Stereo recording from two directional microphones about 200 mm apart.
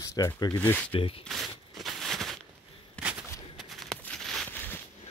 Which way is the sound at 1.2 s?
Centre (ahead or behind).